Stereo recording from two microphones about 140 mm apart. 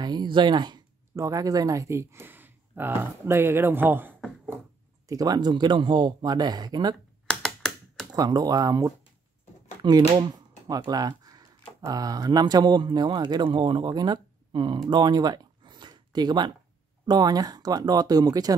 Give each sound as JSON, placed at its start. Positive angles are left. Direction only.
{"t": 0.0, "sound": "a sound", "side_deg": -30}
{"t": 1.1, "sound": "speech", "side_deg": -25}
{"t": 5.0, "sound": "speech", "side_deg": -25}
{"t": 7.2, "sound": "computer keyboard", "side_deg": 5}
{"t": 8.1, "sound": "speech", "side_deg": -30}
{"t": 9.8, "sound": "a sound", "side_deg": -30}
{"t": 10.7, "sound": "speech", "side_deg": -25}